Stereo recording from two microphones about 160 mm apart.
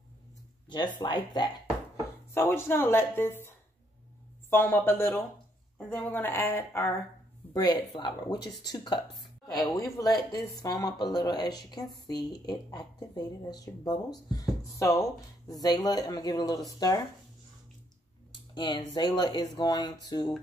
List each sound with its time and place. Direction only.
0.7 s speech: 30° left (ahead or behind)
2.3 s speech: 15° left (ahead or behind)
7.5 s speech: 25° left (ahead or behind)
18.5 s speech: 25° left (ahead or behind)